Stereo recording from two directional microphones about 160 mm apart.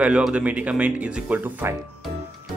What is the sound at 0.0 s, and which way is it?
Speech, 5° right (ahead or behind).